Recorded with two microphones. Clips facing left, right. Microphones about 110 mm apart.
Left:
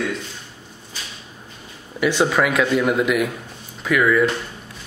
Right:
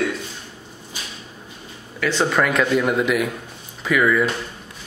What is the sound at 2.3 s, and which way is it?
A man's voice, 5° left (ahead or behind).